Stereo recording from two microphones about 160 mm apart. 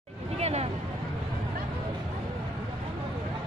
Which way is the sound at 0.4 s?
40° right (ahead or behind).